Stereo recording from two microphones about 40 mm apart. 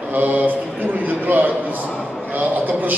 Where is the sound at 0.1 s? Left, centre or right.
Right.